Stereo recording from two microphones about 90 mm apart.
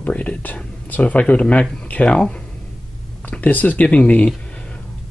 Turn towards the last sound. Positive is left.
turn(degrees=15)  # may be behind; listen again after turning